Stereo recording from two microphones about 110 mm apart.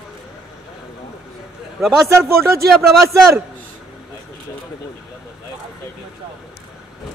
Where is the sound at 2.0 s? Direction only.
25° right (ahead or behind).